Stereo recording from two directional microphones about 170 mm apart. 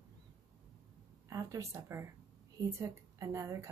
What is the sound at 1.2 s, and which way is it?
Speech, 20° right (ahead or behind).